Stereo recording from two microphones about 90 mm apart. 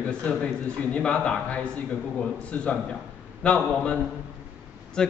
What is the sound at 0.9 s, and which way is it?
Speech, 10° left (ahead or behind).